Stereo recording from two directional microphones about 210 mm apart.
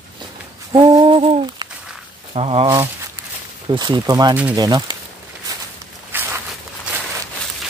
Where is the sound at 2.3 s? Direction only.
25° right (ahead or behind).